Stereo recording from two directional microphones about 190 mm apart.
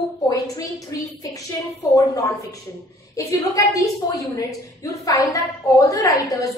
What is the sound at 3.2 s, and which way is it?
A woman's voice, 15° left (ahead or behind).